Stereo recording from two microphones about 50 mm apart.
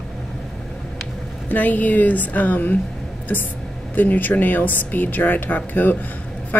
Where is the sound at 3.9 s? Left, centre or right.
Left.